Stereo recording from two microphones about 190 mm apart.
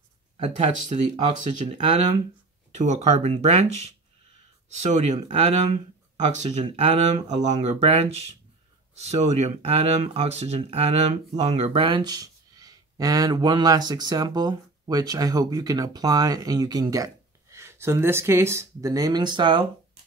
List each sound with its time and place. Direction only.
0.4 s speech: 40° right (ahead or behind)
4.7 s speech: 35° right (ahead or behind)